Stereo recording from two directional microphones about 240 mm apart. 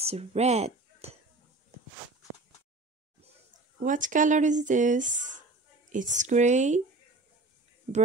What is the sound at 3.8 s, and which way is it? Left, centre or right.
Speech, right.